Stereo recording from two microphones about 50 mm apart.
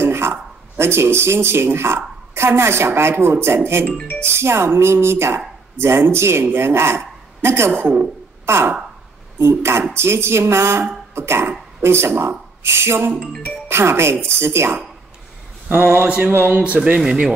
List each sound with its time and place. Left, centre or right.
0.0 s speech: right
15.7 s a man's voice: right
16.6 s speech: right
17.0 s speech: centre